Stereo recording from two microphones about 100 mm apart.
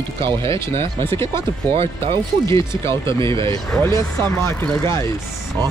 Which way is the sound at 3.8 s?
25° left (ahead or behind).